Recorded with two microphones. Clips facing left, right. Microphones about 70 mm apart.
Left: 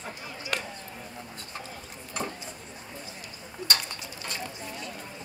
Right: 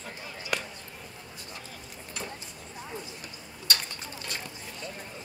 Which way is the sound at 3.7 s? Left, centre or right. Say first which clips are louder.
Left 2 dB; left.